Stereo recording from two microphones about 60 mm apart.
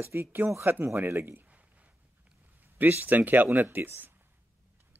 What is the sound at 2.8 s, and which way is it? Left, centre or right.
Speech, right.